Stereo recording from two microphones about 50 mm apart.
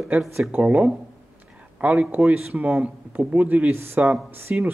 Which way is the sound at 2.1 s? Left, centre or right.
Right.